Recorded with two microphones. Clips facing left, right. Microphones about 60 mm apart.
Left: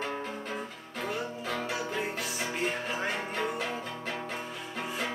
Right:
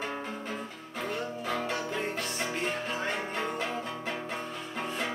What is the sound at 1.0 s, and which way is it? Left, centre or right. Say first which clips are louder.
Music: even; centre.